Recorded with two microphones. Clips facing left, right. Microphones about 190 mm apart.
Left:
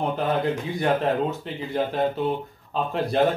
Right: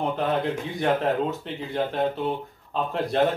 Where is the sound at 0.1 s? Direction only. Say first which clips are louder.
Left 1 dB; centre (ahead or behind).